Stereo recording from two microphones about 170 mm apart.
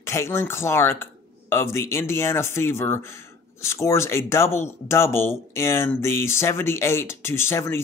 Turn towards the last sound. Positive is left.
turn(degrees=15)  # may be behind; listen again after turning